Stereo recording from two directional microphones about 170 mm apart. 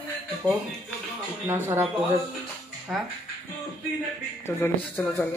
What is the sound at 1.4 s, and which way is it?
Speech, 15° right (ahead or behind).